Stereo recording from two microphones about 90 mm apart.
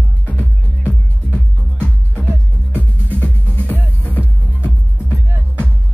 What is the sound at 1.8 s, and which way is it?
Music, 20° right (ahead or behind).